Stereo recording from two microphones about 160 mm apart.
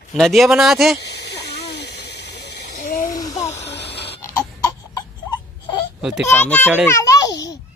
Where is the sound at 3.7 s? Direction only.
90° left.